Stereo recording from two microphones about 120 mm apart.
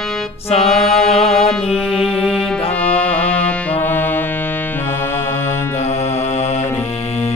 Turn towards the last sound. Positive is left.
turn(degrees=65)  # may be behind; listen again after turning